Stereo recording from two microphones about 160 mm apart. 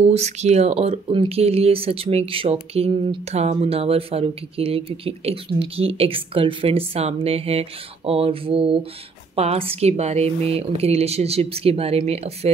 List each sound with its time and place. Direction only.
0.0 s speech: 45° right (ahead or behind)